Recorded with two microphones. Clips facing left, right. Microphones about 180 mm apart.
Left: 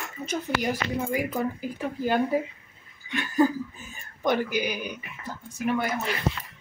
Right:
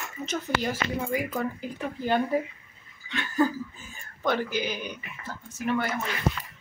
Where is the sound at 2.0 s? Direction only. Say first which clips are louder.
Left 1 dB; 10° left (ahead or behind).